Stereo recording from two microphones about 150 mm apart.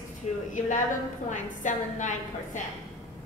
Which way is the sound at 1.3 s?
55° left (ahead or behind).